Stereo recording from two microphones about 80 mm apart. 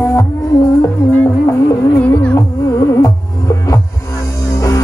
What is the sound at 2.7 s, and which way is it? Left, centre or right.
Music, left.